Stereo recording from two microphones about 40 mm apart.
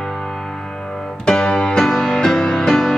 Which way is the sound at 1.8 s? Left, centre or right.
Centre.